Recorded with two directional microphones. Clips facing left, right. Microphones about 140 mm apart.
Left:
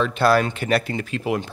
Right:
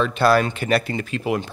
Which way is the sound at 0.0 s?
20° right (ahead or behind).